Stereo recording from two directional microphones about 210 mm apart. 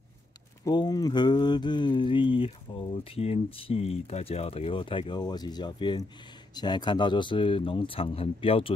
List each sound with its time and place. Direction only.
0.7 s speech: 20° left (ahead or behind)